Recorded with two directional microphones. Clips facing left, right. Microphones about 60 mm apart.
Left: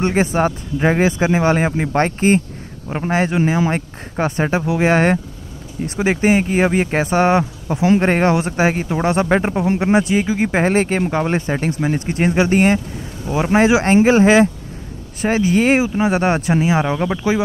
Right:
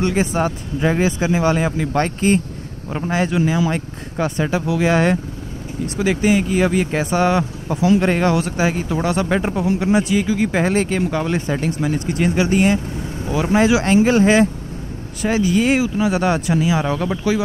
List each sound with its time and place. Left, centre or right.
0.0 s speech: left